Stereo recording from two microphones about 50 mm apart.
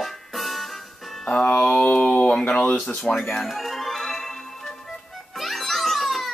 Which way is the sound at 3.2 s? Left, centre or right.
Centre.